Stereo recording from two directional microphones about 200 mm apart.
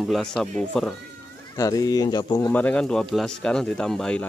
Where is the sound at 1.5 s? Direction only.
15° left (ahead or behind).